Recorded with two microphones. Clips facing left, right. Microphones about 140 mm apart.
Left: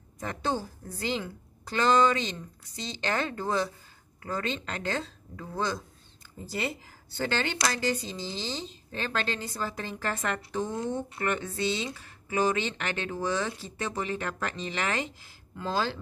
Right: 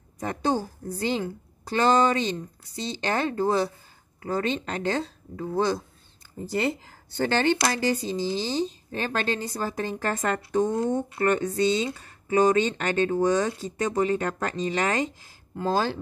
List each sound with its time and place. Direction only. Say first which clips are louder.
0.2 s speech: right 5 dB; 40° right (ahead or behind)
6.5 s speech: right 7 dB; 50° right (ahead or behind)
8.0 s speech: right 9 dB; 10° right (ahead or behind)
8.5 s speech: right 9 dB; 45° right (ahead or behind)